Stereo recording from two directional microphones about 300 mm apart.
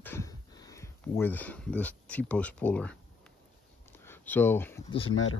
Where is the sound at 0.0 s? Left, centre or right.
Centre.